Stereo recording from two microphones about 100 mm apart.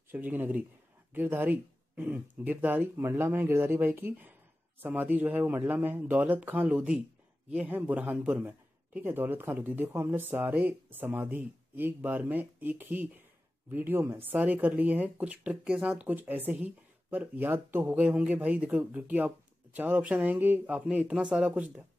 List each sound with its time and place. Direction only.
0.1 s a man's voice: 20° right (ahead or behind)